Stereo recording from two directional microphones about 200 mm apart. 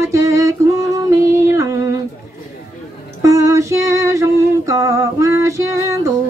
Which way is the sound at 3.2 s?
15° right (ahead or behind).